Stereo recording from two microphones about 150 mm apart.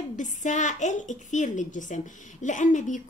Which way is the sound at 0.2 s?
55° left (ahead or behind).